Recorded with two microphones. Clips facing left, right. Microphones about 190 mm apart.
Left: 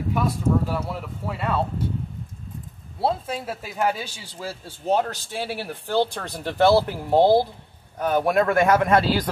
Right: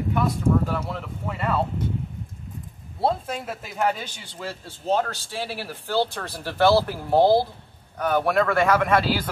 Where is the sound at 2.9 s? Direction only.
5° left (ahead or behind).